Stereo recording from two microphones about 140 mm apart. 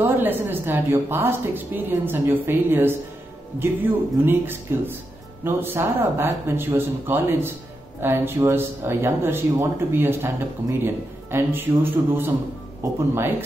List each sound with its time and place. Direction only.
0.0 s a woman's voice: 15° right (ahead or behind)